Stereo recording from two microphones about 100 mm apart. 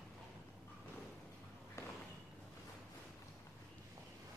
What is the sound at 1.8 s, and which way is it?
Walk, 30° left (ahead or behind).